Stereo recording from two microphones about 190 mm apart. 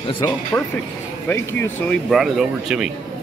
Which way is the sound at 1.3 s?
10° left (ahead or behind).